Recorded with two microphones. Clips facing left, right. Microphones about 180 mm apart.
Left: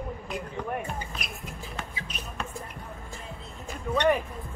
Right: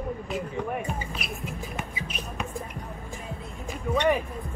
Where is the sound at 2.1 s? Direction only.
10° right (ahead or behind).